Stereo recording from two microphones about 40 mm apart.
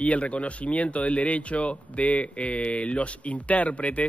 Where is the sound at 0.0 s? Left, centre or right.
Left.